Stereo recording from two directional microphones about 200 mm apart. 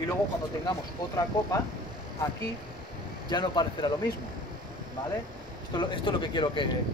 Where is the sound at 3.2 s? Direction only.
20° left (ahead or behind).